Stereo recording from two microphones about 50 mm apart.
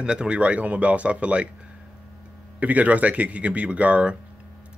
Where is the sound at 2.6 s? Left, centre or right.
Right.